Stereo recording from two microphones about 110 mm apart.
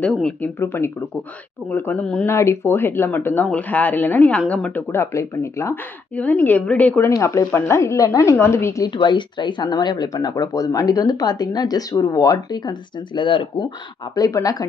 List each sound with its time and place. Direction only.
0.0 s speech: 10° left (ahead or behind)
2.2 s speech: 25° left (ahead or behind)
4.9 s speech: 25° left (ahead or behind)
6.1 s speech: 15° left (ahead or behind)
7.1 s speech: 30° left (ahead or behind)
8.9 s speech: 45° left (ahead or behind)
14.1 s speech: 35° left (ahead or behind)